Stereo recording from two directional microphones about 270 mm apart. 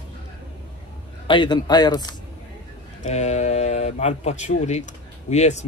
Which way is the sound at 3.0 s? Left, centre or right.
Left.